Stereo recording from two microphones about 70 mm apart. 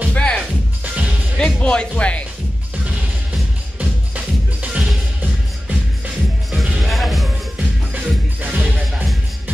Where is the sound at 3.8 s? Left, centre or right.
Centre.